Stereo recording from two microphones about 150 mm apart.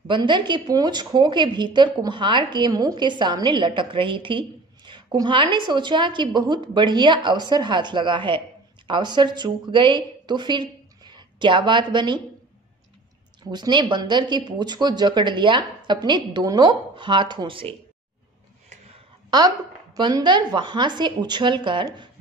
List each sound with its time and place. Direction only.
0.1 s a woman's voice: 30° right (ahead or behind)
13.4 s speech: 30° right (ahead or behind)
20.0 s a woman's voice: 30° right (ahead or behind)